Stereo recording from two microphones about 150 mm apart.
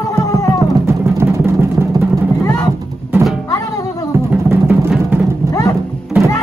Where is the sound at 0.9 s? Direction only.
20° right (ahead or behind).